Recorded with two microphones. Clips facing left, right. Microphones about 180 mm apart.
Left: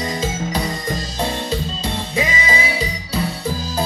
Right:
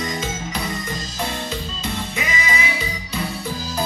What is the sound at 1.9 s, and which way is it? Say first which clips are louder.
Music: left 4 dB; 30° left (ahead or behind).